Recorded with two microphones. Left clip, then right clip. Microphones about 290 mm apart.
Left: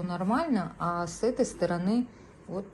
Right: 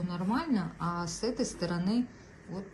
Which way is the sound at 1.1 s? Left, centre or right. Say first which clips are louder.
Left 6 dB; centre.